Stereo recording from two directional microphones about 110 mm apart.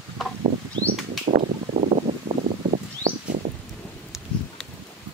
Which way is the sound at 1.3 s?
90° right.